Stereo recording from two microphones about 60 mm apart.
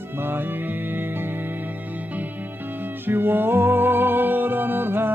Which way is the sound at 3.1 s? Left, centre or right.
Right.